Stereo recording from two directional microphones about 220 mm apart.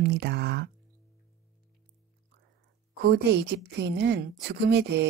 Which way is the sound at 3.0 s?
50° right (ahead or behind).